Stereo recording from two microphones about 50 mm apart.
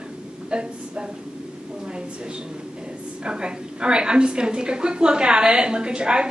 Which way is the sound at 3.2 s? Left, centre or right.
Centre.